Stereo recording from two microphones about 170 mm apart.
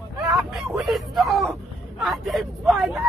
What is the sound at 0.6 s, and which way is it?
Speech, centre (ahead or behind).